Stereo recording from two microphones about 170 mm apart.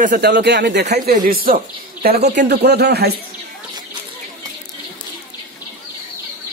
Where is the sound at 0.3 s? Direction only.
80° right; by 1.6 s 55° right (ahead or behind).